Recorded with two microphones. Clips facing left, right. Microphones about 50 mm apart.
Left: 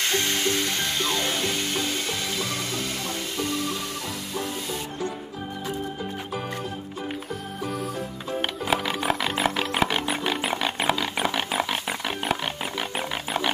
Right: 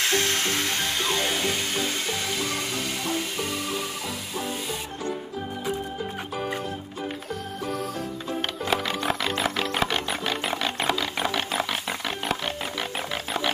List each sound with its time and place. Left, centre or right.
0.0 s music: centre
8.3 s music: centre